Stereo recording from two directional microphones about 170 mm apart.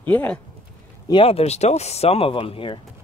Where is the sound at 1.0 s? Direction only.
30° left (ahead or behind).